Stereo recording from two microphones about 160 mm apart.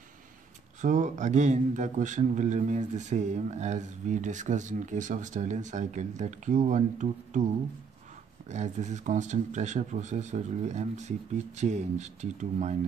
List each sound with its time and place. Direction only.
0.7 s a man's voice: 50° right (ahead or behind)
8.5 s a man's voice: 45° right (ahead or behind)